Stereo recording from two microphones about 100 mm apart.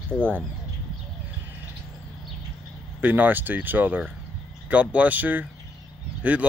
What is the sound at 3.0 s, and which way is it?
Speech, 15° right (ahead or behind).